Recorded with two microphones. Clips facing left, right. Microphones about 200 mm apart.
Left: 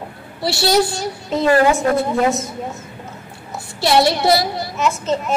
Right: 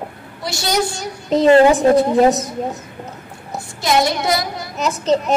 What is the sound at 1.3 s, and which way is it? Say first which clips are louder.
Speech: right 4 dB; 25° right (ahead or behind).